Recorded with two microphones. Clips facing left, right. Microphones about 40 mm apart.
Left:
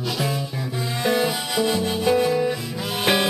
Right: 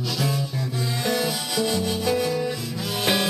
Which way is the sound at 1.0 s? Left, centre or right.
Centre.